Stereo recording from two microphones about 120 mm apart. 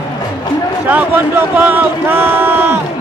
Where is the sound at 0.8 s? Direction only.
15° right (ahead or behind).